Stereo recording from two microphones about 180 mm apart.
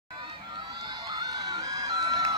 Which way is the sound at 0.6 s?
20° right (ahead or behind).